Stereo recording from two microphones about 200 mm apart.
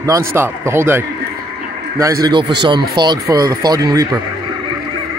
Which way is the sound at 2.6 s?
20° right (ahead or behind).